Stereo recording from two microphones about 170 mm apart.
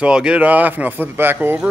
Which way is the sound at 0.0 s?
5° right (ahead or behind).